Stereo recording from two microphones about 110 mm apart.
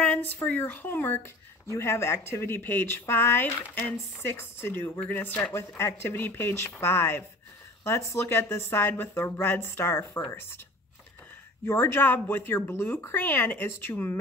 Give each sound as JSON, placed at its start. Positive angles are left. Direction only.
{"t": 0.0, "sound": "speech", "side_deg": 15}
{"t": 11.6, "sound": "speech", "side_deg": 20}